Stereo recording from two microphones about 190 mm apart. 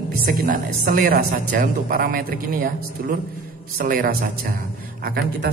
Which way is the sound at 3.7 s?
50° right (ahead or behind).